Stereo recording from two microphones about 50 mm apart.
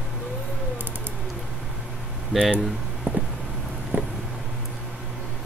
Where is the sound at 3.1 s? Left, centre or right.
Right.